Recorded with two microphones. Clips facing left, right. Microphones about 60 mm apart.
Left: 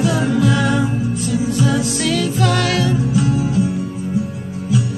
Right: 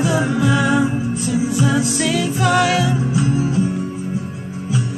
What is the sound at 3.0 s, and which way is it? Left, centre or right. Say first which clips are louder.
Music: left 1 dB; right.